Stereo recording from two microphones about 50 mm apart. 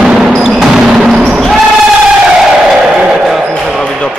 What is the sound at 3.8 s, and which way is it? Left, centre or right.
Basketball bounce, centre.